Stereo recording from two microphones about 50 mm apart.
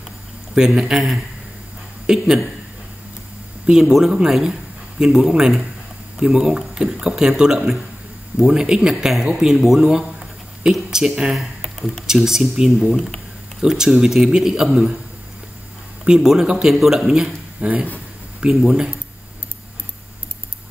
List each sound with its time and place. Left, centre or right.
0.6 s speech: centre
3.6 s a man's voice: centre
11.3 s a sound: centre
12.1 s speech: centre
16.0 s speech: centre
17.6 s speech: right
18.5 s speech: centre